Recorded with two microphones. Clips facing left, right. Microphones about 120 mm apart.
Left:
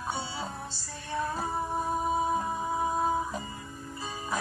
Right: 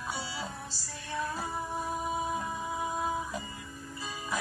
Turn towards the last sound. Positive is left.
turn(degrees=30)  # may be behind; listen again after turning